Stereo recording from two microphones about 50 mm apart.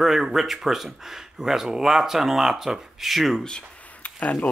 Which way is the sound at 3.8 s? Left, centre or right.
Left.